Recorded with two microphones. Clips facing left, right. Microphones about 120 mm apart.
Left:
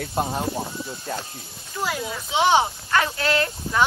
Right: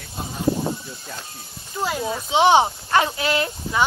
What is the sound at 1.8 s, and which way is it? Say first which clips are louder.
Speech: right 3 dB; 25° right (ahead or behind).